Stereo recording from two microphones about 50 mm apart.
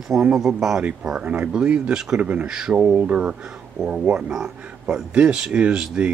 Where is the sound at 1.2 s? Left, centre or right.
Right.